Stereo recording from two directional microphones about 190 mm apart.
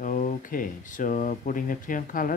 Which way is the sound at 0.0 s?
45° left (ahead or behind).